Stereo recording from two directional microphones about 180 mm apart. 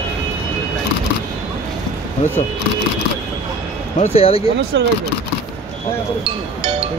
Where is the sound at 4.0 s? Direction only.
35° left (ahead or behind).